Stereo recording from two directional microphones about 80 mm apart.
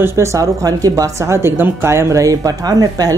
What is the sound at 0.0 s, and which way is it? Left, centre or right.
Speech, right.